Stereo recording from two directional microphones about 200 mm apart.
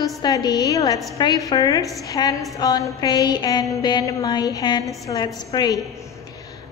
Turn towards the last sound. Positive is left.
turn(degrees=15)  # may be behind; listen again after turning